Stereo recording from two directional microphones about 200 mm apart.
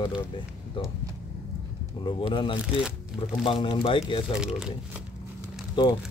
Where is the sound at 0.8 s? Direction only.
25° left (ahead or behind).